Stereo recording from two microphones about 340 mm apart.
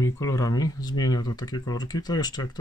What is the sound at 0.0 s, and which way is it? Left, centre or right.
Speech, centre.